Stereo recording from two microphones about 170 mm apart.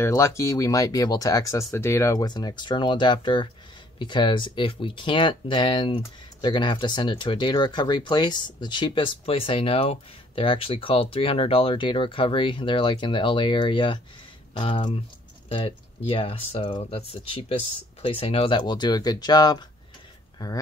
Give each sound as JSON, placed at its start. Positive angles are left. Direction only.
{"t": 0.0, "sound": "speech", "side_deg": 15}